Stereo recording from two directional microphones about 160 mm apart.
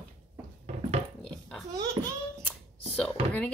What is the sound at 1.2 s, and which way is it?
Burping, 5° left (ahead or behind).